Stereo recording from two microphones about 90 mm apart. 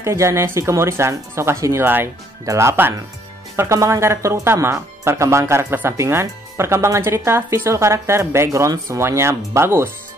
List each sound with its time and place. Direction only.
0.0 s speech: 30° right (ahead or behind)